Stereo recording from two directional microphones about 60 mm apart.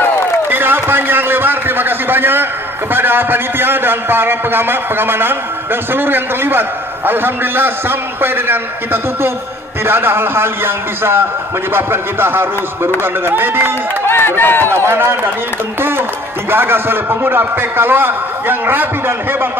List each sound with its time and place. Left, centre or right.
0.5 s a sound: right
2.9 s a man's voice: right
14.0 s speech: left
14.9 s a man's voice: right
16.4 s a man's voice: right